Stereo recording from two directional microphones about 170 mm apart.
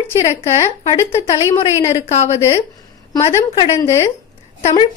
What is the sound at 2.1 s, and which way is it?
Speech, 40° left (ahead or behind).